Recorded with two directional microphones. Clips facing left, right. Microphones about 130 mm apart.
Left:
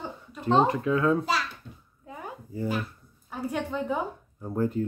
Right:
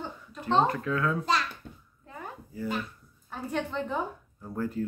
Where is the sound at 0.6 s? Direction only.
20° left (ahead or behind).